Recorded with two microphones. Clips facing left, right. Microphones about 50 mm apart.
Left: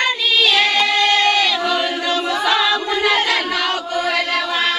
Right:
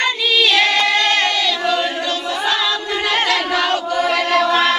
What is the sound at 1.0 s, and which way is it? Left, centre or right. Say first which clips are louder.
Child singing: left 1 dB; right.